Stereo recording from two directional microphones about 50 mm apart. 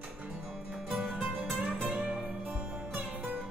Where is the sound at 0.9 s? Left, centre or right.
Centre.